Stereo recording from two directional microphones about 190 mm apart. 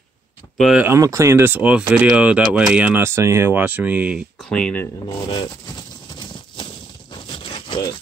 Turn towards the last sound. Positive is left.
turn(degrees=25)  # may be behind; listen again after turning